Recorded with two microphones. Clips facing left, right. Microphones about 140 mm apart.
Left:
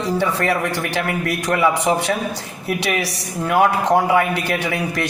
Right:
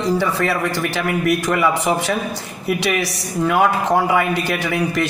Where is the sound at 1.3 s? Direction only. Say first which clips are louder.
Even; 25° left (ahead or behind).